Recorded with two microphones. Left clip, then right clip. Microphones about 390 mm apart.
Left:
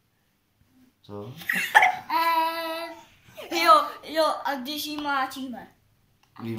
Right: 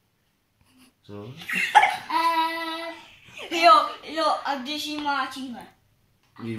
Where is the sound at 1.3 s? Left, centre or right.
Centre.